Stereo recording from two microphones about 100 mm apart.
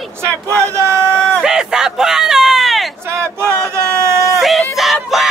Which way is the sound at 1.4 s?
5° right (ahead or behind).